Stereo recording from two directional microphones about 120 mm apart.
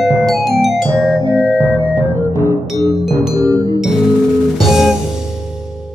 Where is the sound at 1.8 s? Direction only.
15° right (ahead or behind).